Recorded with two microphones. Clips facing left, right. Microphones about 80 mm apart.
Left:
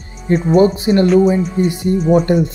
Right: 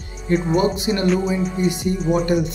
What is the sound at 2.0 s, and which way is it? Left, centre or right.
Music, centre.